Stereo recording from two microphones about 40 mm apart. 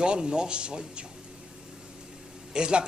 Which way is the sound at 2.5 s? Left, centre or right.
Right.